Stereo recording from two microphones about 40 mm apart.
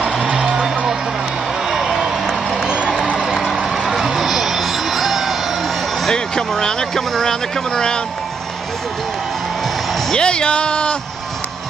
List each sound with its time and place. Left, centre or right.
0.2 s music: centre
1.7 s vehicle: centre
2.6 s music: centre
3.7 s music: centre
6.1 s speech: centre
10.1 s speech: left